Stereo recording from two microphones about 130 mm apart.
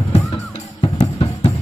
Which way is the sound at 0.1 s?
45° left (ahead or behind).